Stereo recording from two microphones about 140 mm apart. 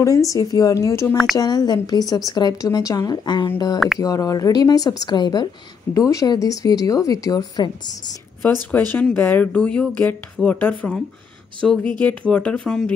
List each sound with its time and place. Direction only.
0.0 s a woman's voice: 25° left (ahead or behind)
8.4 s speech: 10° left (ahead or behind)